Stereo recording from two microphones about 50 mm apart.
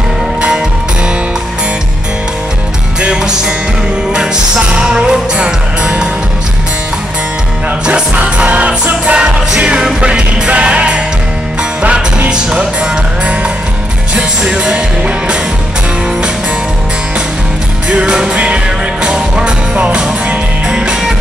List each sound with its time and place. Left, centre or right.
3.0 s music: centre
7.8 s music: right
14.1 s music: centre
17.8 s music: centre